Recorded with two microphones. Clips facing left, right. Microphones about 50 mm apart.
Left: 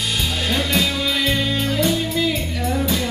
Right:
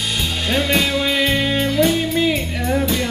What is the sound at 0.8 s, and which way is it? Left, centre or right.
Music, centre.